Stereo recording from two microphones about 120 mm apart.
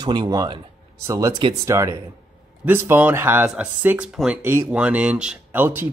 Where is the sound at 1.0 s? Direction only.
25° right (ahead or behind).